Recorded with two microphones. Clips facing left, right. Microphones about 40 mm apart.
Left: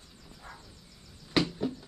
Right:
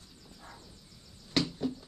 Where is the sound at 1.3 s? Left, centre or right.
Centre.